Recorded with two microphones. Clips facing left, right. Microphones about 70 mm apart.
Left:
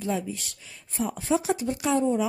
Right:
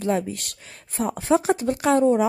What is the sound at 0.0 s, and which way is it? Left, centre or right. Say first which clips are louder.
A woman's voice: right 5 dB; right.